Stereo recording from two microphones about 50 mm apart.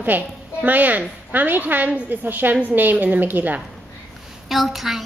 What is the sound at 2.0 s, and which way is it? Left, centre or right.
A woman's voice, right.